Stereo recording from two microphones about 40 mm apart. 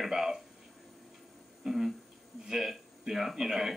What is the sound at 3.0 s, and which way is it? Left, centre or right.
Speech, centre.